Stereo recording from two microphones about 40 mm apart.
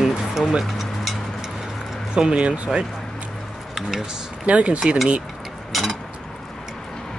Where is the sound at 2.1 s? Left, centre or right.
Right.